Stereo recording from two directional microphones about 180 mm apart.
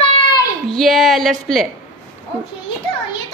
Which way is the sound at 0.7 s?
Centre (ahead or behind).